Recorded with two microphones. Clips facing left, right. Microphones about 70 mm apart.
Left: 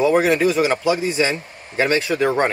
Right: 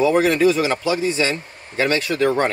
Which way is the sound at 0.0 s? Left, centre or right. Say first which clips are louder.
Even; centre.